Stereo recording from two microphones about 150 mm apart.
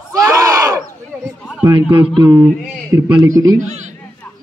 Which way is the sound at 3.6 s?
55° right (ahead or behind).